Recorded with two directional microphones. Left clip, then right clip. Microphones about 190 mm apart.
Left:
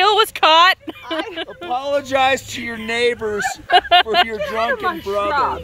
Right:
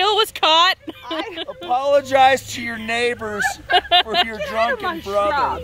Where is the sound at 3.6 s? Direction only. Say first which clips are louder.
Left 4 dB; 10° left (ahead or behind).